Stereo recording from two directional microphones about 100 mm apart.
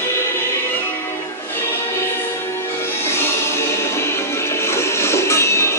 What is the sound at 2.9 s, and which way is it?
Music, 25° left (ahead or behind).